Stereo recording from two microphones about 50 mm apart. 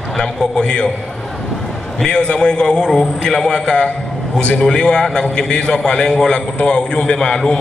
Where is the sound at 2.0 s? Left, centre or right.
Centre.